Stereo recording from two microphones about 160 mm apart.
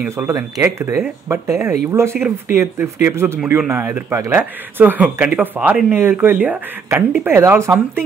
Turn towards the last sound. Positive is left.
turn(degrees=-15)  # may be behind; listen again after turning